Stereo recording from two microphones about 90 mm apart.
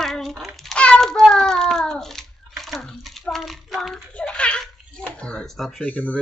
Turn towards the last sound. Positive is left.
turn(degrees=15)  # may be behind; listen again after turning